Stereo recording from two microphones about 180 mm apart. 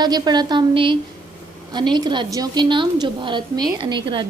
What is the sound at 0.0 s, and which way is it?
A woman's voice, 25° right (ahead or behind).